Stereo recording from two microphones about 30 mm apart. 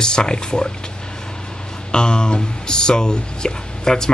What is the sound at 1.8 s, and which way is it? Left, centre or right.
Speech, left.